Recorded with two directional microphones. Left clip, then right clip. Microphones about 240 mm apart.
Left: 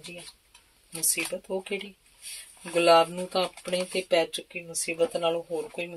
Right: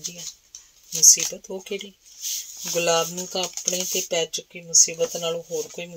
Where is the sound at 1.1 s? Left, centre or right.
Right.